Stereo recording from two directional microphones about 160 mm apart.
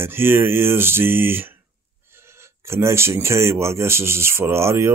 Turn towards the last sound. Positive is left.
turn(degrees=-15)  # may be behind; listen again after turning